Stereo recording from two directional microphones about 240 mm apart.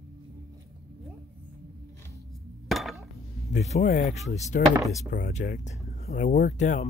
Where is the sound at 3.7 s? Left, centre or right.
Left.